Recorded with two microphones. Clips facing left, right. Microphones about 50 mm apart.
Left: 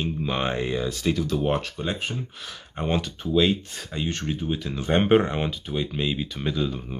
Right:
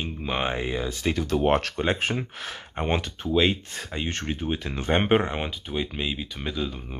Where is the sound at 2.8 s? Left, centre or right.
Right.